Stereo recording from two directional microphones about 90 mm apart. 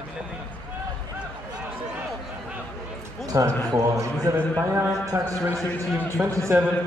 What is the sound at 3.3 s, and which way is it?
A man's voice, 35° right (ahead or behind).